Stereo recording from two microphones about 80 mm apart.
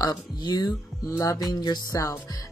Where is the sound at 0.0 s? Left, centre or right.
Left.